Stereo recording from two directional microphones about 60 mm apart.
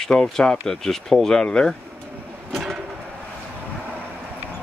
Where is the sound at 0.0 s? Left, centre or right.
Centre.